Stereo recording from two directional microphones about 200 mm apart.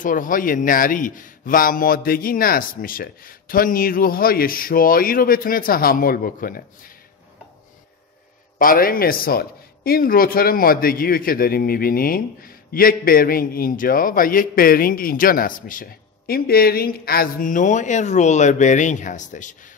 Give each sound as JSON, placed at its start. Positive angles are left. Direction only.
{"t": 0.0, "sound": "speech", "side_deg": 40}
{"t": 8.5, "sound": "speech", "side_deg": 45}